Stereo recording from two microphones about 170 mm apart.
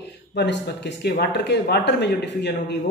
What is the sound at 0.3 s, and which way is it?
A man's voice, 90° left.